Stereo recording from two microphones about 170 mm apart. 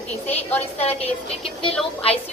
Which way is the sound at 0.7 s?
35° left (ahead or behind).